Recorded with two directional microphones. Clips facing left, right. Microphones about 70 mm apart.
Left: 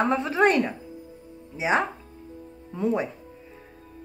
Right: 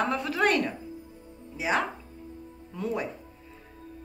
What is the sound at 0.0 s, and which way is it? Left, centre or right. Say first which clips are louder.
Speech: left 5 dB; left.